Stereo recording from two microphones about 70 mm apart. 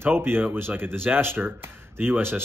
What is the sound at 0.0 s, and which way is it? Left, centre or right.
Speech, right.